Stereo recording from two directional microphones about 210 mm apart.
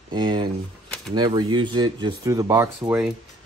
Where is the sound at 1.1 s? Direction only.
20° right (ahead or behind).